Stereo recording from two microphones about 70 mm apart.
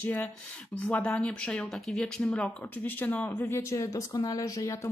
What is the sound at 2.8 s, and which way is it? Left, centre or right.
Speech, left.